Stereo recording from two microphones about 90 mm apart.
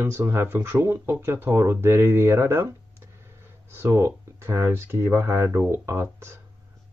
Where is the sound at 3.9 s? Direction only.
30° right (ahead or behind).